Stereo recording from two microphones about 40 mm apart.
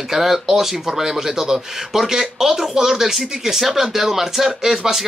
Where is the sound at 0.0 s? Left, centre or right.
Centre.